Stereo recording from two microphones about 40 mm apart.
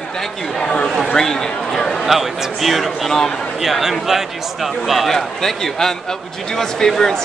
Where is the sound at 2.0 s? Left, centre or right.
Centre.